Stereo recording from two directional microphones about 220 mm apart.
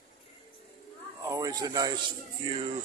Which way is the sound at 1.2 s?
15° right (ahead or behind).